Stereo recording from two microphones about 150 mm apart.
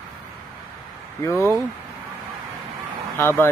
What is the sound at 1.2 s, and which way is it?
Speech, 20° left (ahead or behind).